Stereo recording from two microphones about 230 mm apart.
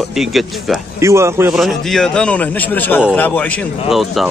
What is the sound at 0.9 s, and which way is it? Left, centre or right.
Speech, centre.